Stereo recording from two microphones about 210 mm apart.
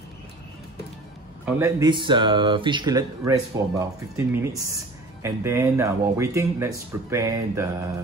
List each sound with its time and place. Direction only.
1.4 s speech: 15° right (ahead or behind)